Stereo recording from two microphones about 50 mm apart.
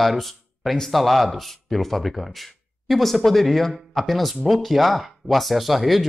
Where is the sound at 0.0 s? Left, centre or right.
Centre.